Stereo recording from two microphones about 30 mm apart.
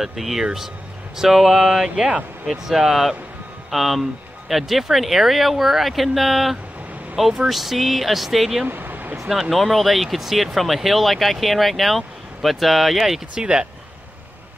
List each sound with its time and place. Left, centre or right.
0.0 s speech: centre
2.0 s speech: right
2.4 s speech: centre
8.6 s vehicle: right
9.3 s speech: centre
13.3 s speech: right